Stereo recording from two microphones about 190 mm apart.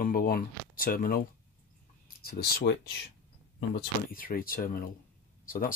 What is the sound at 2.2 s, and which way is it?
Speech, 55° left (ahead or behind).